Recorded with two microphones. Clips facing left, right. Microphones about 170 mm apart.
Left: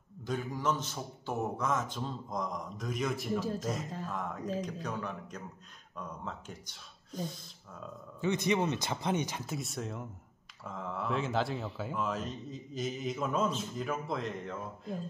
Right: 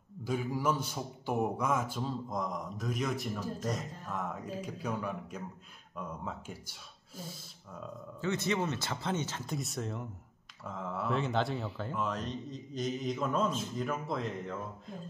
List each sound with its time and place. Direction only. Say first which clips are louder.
0.2 s speech: right 2 dB; 10° right (ahead or behind)
8.2 s speech: left 2 dB; 15° left (ahead or behind)
9.5 s speech: right 1 dB; centre (ahead or behind)